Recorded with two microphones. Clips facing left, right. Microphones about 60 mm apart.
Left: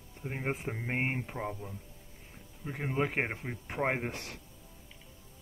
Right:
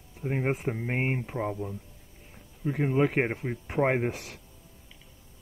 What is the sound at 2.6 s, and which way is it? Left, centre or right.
Speech, centre.